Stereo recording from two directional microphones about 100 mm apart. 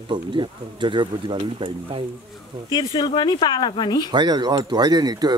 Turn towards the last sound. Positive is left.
turn(degrees=-45)  # may be behind; listen again after turning